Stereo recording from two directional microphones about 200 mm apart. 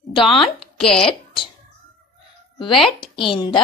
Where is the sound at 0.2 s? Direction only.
25° left (ahead or behind).